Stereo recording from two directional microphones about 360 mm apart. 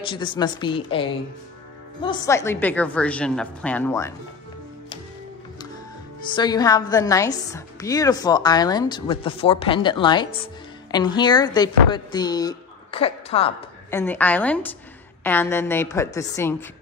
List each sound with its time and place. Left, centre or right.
0.0 s a woman's voice: centre
6.3 s a woman's voice: centre
13.8 s a woman's voice: centre